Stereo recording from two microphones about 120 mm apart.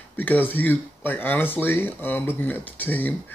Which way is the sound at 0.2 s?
15° left (ahead or behind).